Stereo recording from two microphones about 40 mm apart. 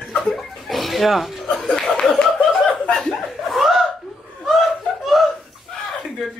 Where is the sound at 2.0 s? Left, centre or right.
Centre.